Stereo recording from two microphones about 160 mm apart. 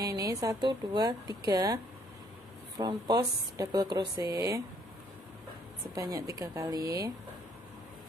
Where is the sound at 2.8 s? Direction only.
25° right (ahead or behind).